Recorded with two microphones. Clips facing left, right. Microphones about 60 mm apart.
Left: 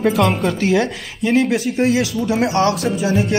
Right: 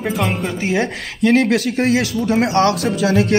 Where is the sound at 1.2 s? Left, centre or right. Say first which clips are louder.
Right 2 dB; right.